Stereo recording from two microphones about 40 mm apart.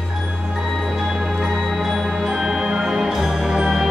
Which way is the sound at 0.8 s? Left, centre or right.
Centre.